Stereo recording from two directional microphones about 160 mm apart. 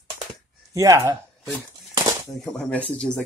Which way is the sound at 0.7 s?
20° right (ahead or behind).